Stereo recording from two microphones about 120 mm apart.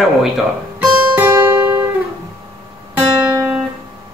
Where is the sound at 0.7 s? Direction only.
15° right (ahead or behind).